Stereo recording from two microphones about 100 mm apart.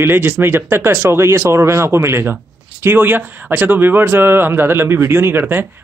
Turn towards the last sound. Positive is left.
turn(degrees=-20)  # may be behind; listen again after turning